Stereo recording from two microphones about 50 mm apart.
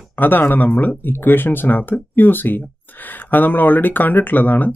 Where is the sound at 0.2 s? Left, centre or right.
Left.